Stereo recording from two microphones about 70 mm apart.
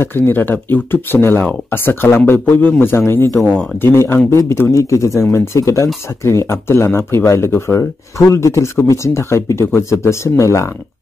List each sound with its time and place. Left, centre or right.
0.0 s speech: left